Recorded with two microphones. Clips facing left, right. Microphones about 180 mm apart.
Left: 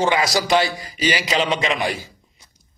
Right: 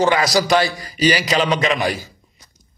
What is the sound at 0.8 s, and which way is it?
Speech, 25° left (ahead or behind).